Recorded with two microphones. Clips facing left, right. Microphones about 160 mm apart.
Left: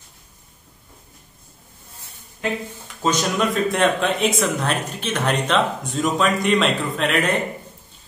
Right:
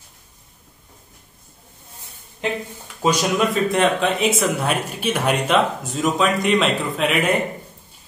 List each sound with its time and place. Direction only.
2.4 s speech: 20° right (ahead or behind)
3.0 s speech: 5° right (ahead or behind)